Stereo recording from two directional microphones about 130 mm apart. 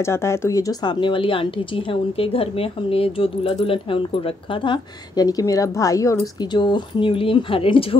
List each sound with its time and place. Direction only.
0.0 s a woman's voice: 20° left (ahead or behind)
1.0 s a woman's voice: 40° left (ahead or behind)
4.6 s a woman's voice: 30° left (ahead or behind)
6.5 s speech: 35° left (ahead or behind)